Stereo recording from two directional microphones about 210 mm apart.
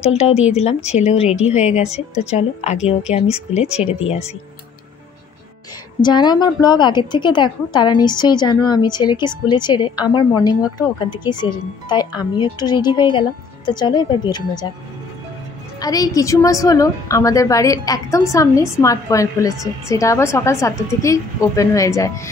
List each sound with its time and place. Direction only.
0.0 s speech: 30° left (ahead or behind)
5.9 s a woman's voice: 20° left (ahead or behind)